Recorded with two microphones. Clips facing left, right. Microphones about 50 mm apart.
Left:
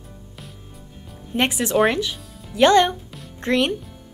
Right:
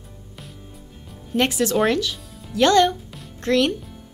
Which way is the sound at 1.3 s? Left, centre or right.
Left.